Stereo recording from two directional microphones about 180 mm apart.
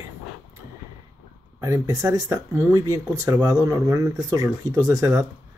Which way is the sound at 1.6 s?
20° right (ahead or behind).